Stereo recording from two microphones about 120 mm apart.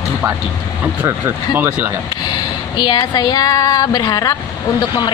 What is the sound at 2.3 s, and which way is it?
Speech, 35° left (ahead or behind).